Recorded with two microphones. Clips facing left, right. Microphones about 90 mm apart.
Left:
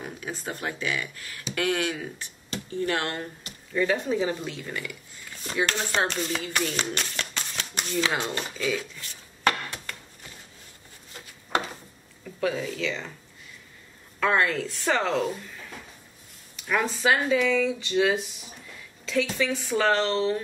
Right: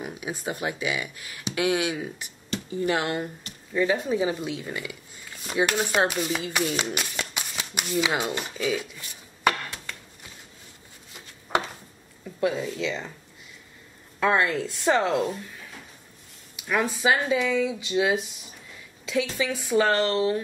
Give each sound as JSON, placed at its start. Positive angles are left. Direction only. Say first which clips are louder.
{"t": 0.0, "sound": "speech", "louder": "right 3 dB", "side_deg": -10}
{"t": 5.3, "sound": "a sound", "louder": "right 1 dB", "side_deg": -5}
{"t": 5.6, "sound": "speech", "louder": "right 3 dB", "side_deg": -15}
{"t": 12.4, "sound": "speech", "louder": "right 2 dB", "side_deg": -10}
{"t": 12.7, "sound": "speech", "louder": "right 1 dB", "side_deg": -25}
{"t": 14.2, "sound": "speech", "louder": "right 1 dB", "side_deg": -15}
{"t": 16.5, "sound": "speech", "louder": "right 1 dB", "side_deg": -5}